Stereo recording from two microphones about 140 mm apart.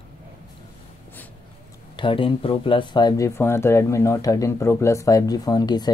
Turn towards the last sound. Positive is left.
turn(degrees=30)  # may be behind; listen again after turning